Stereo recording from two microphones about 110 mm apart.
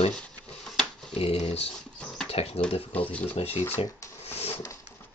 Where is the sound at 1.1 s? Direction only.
65° left (ahead or behind).